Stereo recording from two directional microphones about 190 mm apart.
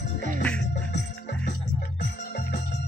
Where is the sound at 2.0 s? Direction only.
40° left (ahead or behind).